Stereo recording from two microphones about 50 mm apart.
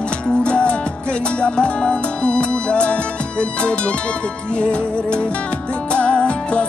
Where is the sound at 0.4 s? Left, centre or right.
Left.